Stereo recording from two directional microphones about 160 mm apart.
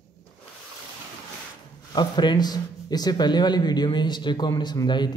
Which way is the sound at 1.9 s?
25° left (ahead or behind).